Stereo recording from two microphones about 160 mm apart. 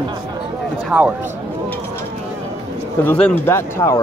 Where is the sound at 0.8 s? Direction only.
10° right (ahead or behind).